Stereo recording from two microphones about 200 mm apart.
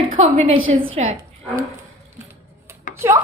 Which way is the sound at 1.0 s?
35° right (ahead or behind).